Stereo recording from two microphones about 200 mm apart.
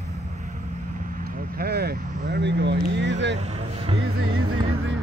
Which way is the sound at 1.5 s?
50° right (ahead or behind).